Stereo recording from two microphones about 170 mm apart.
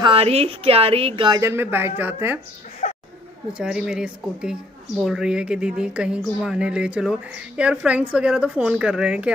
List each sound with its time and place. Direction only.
0.0 s a woman's voice: 35° right (ahead or behind)
1.4 s speech: 15° right (ahead or behind)
2.8 s chatter: 45° left (ahead or behind)
3.5 s speech: 5° right (ahead or behind)